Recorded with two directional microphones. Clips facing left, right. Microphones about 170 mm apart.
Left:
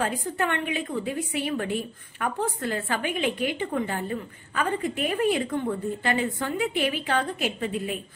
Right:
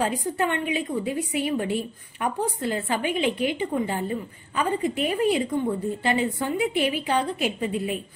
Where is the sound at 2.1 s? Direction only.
15° right (ahead or behind).